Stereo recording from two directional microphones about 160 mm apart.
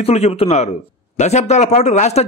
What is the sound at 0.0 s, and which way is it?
A man's voice, 40° left (ahead or behind).